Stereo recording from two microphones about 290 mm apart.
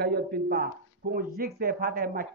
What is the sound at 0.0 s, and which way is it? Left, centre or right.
Speech, right.